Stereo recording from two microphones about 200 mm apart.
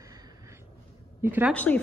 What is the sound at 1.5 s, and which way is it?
Speech, 5° left (ahead or behind).